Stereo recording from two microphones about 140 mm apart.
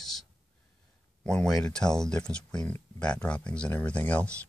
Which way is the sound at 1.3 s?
5° left (ahead or behind).